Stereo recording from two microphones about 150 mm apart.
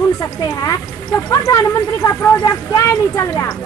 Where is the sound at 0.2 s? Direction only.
20° left (ahead or behind).